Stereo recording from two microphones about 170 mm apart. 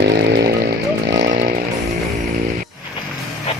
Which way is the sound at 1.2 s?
50° right (ahead or behind).